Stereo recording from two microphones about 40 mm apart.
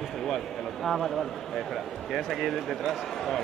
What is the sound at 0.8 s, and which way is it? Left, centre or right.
A man's voice, centre.